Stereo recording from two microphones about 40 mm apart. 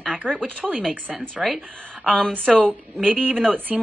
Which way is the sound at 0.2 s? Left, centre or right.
Left.